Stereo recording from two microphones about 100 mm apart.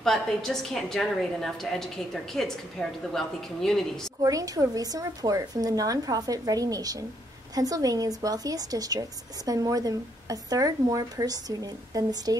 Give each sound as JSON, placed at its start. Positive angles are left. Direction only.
{"t": 0.0, "sound": "a woman's voice", "side_deg": 5}
{"t": 4.2, "sound": "speech", "side_deg": -35}